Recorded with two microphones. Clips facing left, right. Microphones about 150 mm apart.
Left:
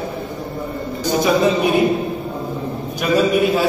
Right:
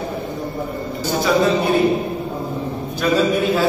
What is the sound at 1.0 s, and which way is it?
Speech, 15° left (ahead or behind).